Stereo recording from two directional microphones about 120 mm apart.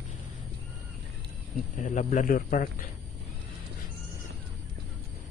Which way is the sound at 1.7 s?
90° left.